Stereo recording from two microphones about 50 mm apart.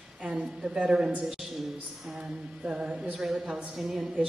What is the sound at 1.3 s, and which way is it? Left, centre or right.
Speech, centre.